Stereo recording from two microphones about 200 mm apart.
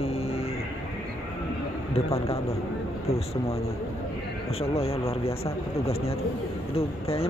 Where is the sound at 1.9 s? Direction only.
30° left (ahead or behind).